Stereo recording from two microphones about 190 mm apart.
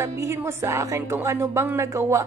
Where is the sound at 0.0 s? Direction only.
15° right (ahead or behind).